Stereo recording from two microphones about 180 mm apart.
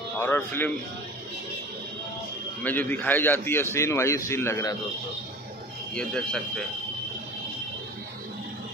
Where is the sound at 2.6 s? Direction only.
10° left (ahead or behind).